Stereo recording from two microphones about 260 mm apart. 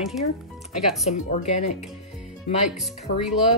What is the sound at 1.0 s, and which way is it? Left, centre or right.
Speech, left.